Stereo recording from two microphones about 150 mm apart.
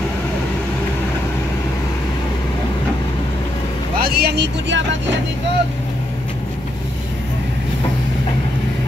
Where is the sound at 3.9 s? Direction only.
85° right.